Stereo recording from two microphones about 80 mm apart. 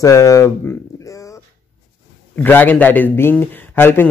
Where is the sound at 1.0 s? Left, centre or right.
Left.